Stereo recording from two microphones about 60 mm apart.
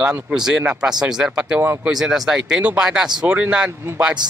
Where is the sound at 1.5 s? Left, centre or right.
Right.